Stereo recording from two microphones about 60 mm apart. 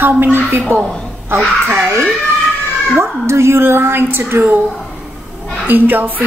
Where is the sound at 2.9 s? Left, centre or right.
Right.